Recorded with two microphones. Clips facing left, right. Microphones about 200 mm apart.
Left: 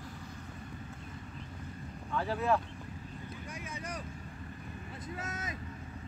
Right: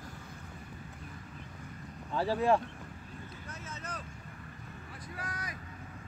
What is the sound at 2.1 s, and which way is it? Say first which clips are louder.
Speech: right 3 dB; 30° right (ahead or behind).